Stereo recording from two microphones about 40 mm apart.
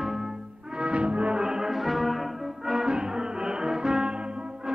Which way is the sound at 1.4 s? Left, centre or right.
Centre.